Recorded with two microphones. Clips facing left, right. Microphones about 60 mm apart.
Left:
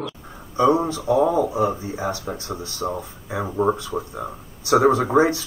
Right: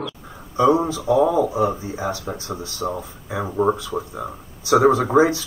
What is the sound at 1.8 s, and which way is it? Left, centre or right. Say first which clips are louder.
Speech: even; right.